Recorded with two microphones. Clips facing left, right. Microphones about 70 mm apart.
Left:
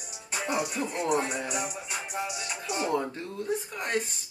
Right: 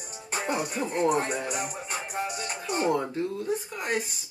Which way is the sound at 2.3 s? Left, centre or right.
Right.